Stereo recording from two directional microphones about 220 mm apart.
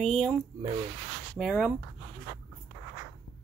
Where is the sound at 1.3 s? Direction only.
5° right (ahead or behind).